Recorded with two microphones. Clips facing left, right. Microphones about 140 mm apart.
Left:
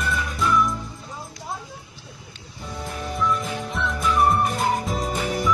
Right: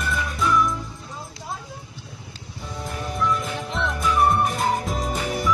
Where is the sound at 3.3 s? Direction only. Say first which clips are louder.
Even; centre (ahead or behind).